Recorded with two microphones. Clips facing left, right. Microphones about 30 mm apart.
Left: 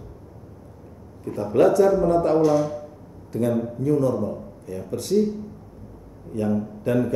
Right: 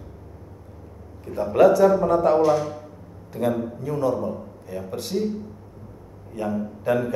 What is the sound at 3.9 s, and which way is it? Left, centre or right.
Speech, right.